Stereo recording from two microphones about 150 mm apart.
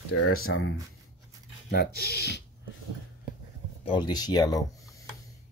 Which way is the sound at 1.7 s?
90° left.